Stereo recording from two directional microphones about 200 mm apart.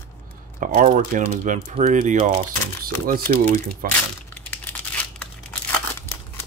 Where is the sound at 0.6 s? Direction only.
40° right (ahead or behind).